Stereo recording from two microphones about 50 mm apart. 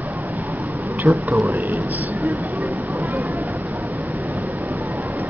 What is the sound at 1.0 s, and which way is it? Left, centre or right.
Speech, right.